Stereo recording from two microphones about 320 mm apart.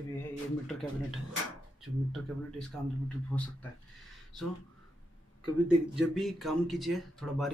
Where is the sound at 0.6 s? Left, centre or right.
Centre.